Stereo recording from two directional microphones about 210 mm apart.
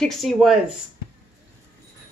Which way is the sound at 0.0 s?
Centre (ahead or behind).